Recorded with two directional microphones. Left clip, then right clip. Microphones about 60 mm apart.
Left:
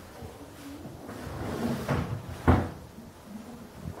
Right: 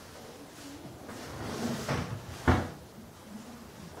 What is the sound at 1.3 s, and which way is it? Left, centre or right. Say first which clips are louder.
Cupboard open or close: left 3 dB; centre.